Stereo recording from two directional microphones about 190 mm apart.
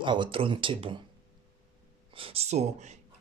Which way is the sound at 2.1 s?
30° right (ahead or behind).